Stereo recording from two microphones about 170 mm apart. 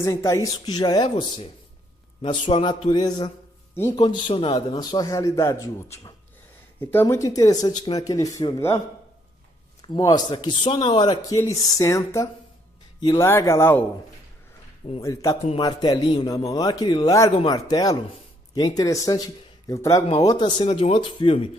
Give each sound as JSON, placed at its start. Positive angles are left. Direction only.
{"t": 0.0, "sound": "a man's voice", "side_deg": 20}
{"t": 15.0, "sound": "a man's voice", "side_deg": 20}